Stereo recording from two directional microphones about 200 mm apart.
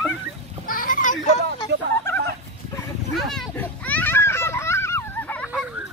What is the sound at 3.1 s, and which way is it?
Children playing, centre (ahead or behind).